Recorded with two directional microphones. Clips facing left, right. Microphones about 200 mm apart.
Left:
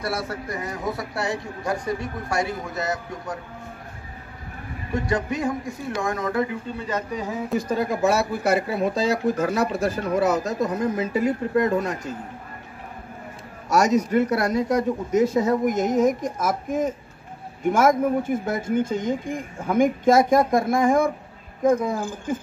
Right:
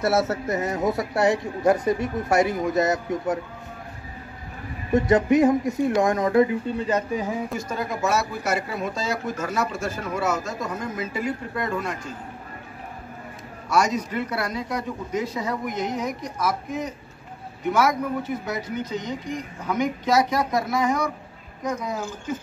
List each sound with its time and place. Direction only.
0.0 s speech: 25° right (ahead or behind)
4.9 s speech: 20° right (ahead or behind)
6.9 s speech: 20° right (ahead or behind)
7.5 s speech: 35° left (ahead or behind)
13.7 s speech: 45° left (ahead or behind)